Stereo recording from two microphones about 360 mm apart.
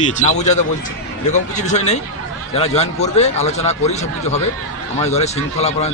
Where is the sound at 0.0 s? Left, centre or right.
Centre.